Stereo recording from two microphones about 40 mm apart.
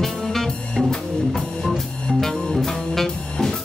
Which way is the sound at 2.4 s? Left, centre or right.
Centre.